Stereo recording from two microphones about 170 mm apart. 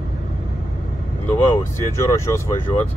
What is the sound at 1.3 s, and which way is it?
Speech, 10° left (ahead or behind).